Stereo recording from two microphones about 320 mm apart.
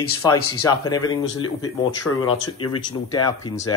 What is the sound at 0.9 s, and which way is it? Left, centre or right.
Speech, centre.